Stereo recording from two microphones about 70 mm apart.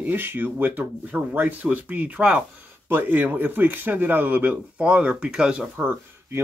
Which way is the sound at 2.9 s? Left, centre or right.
Right.